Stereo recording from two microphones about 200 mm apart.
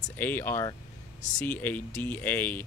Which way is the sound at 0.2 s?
10° left (ahead or behind).